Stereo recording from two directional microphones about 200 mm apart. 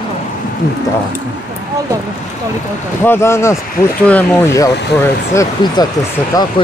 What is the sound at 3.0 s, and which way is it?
Speech, 15° left (ahead or behind).